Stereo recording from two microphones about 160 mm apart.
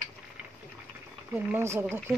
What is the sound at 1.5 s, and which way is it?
Speech, 15° right (ahead or behind).